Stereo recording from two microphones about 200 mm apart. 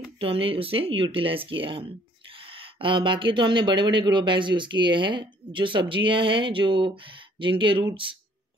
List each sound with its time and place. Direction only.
0.2 s speech: 25° right (ahead or behind)